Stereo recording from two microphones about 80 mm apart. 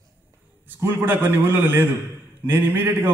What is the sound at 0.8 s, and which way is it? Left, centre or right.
A man's voice, right.